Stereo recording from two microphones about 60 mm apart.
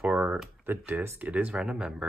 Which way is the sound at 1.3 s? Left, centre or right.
Right.